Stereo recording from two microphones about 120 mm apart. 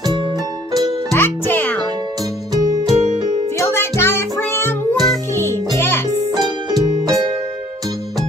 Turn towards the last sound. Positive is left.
turn(degrees=-35)  # may be behind; listen again after turning